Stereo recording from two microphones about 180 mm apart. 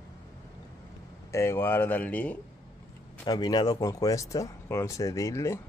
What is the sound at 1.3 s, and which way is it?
Speech, 15° left (ahead or behind).